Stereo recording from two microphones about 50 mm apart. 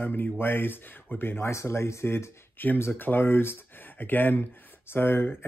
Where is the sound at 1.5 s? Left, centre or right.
Left.